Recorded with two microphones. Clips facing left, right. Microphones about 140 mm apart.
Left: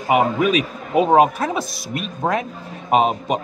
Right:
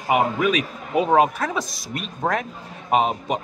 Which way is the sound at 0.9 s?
20° left (ahead or behind).